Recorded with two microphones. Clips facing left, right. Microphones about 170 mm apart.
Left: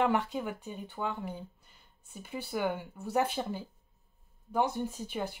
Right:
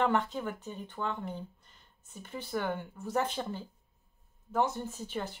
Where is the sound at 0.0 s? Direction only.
10° left (ahead or behind).